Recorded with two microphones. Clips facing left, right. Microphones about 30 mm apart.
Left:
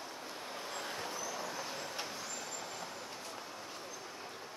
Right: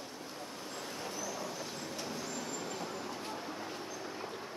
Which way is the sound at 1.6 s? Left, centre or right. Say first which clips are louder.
Even; centre.